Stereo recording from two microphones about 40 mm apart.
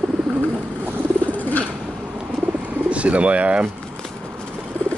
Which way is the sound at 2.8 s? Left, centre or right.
Right.